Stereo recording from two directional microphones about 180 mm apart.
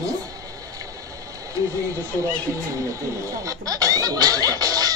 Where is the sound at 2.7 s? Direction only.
15° right (ahead or behind).